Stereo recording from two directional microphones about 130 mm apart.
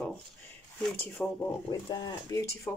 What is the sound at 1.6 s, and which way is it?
Speech, 35° left (ahead or behind).